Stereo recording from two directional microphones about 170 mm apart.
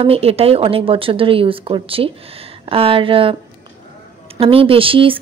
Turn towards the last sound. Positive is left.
turn(degrees=-30)  # may be behind; listen again after turning